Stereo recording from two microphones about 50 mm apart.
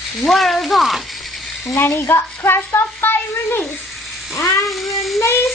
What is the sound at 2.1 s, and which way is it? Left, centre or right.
A woman's voice, left.